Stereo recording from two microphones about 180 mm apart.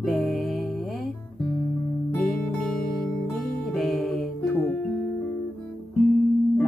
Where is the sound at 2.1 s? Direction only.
Centre (ahead or behind).